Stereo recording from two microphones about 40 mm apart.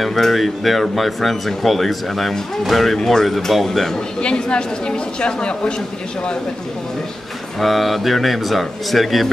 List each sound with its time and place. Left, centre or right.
0.0 s speech: centre
3.3 s speech: centre
4.2 s speech: left
7.6 s speech: centre